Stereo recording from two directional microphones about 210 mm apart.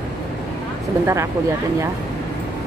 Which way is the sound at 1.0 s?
15° right (ahead or behind).